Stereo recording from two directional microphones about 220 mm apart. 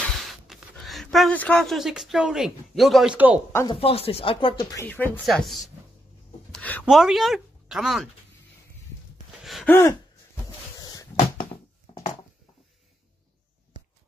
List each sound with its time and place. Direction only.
0.3 s speech: centre (ahead or behind)
3.8 s speech: 25° left (ahead or behind)
4.8 s speech: 10° left (ahead or behind)
9.3 s gasp: centre (ahead or behind)
10.8 s cupboard open or close: 15° left (ahead or behind)